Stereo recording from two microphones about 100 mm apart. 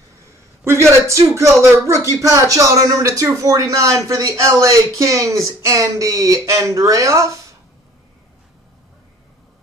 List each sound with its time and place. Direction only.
0.7 s speech: 30° right (ahead or behind)